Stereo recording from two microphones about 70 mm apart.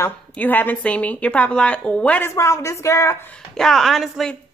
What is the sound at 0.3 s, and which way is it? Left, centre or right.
A woman's voice, left.